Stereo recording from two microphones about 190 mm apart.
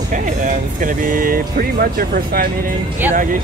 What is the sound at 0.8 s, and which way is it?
Speech, 45° right (ahead or behind).